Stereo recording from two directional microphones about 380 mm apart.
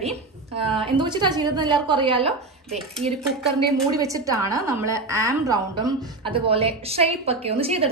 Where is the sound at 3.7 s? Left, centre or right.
Centre.